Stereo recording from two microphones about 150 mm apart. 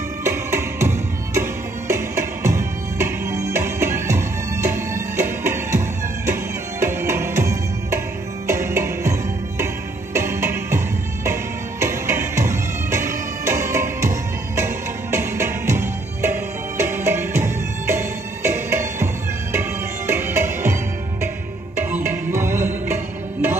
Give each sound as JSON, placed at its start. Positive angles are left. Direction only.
{"t": 0.2, "sound": "music", "side_deg": -15}
{"t": 11.8, "sound": "music", "side_deg": -20}
{"t": 20.1, "sound": "music", "side_deg": -15}
{"t": 21.7, "sound": "music", "side_deg": -15}